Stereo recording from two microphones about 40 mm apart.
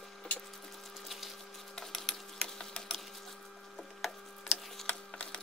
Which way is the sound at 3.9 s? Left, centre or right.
Centre.